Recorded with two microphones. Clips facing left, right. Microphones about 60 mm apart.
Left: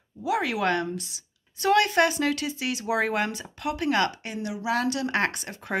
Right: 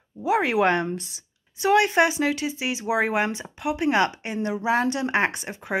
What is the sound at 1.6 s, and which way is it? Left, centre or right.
Speech, centre.